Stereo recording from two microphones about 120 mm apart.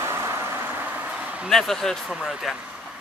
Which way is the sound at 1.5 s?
Centre (ahead or behind).